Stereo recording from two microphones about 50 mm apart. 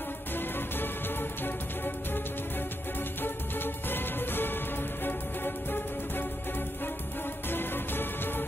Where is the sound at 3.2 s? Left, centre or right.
Left.